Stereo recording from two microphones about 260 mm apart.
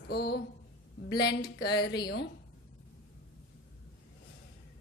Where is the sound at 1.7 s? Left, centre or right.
Centre.